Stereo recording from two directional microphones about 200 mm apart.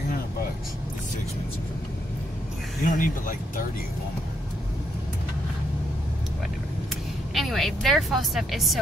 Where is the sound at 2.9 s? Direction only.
40° left (ahead or behind).